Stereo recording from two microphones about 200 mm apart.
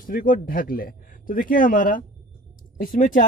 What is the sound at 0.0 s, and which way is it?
Speech, 45° left (ahead or behind).